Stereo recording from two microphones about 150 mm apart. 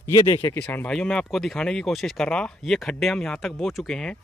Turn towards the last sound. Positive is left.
turn(degrees=5)  # may be behind; listen again after turning